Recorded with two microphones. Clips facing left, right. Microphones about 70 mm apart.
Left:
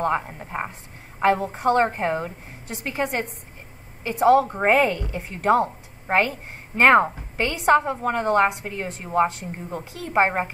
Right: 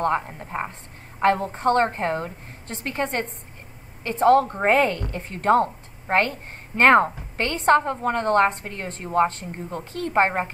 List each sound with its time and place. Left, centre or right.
0.0 s a woman's voice: centre